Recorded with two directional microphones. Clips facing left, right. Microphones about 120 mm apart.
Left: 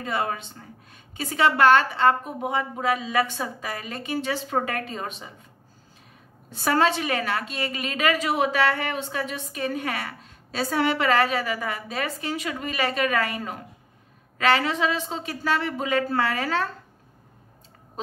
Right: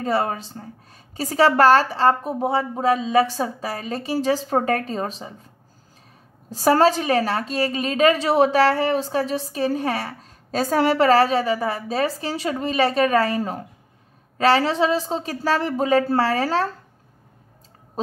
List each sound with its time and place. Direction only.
0.0 s a woman's voice: 35° right (ahead or behind)
6.5 s a woman's voice: 35° right (ahead or behind)
18.0 s oink: 35° right (ahead or behind)